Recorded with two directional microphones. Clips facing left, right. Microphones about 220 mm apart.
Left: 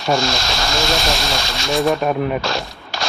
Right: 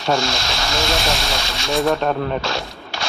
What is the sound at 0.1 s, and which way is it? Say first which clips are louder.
Speech: left 2 dB; 40° left (ahead or behind).